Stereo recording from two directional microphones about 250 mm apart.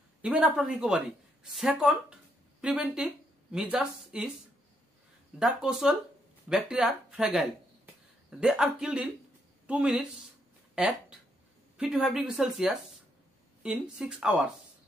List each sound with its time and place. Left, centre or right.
0.2 s speech: centre
5.4 s speech: centre
10.7 s a sound: centre
11.7 s speech: centre